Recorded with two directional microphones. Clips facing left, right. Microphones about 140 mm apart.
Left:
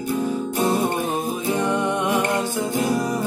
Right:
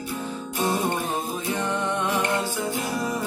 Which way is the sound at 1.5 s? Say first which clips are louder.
Left 5 dB; 15° left (ahead or behind).